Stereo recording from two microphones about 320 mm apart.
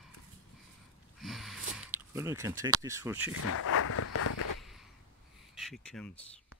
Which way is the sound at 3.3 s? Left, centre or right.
Left.